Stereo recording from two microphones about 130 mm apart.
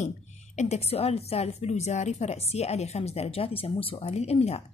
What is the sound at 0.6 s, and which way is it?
A woman's voice, 55° left (ahead or behind).